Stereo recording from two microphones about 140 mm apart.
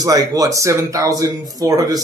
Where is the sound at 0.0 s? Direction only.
25° right (ahead or behind).